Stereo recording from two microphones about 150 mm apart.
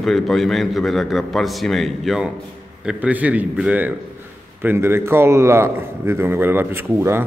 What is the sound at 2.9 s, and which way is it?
A man's voice, 10° right (ahead or behind).